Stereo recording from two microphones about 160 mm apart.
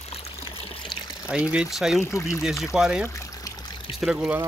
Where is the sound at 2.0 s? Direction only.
15° left (ahead or behind).